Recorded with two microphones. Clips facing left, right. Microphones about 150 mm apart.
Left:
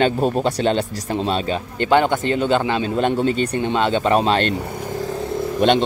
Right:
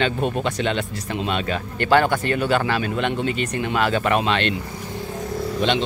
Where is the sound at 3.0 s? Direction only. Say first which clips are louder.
Left 5 dB; 40° left (ahead or behind).